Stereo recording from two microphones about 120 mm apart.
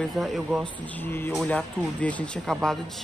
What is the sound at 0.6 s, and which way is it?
Speech, 15° left (ahead or behind).